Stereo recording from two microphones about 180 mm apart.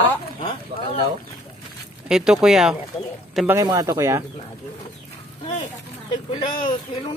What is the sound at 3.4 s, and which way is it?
Speech, 20° right (ahead or behind).